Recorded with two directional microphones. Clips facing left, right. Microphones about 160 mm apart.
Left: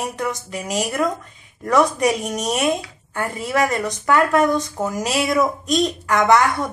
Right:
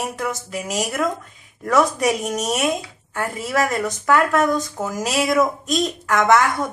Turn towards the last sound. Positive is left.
turn(degrees=0)  # may be behind; listen again after turning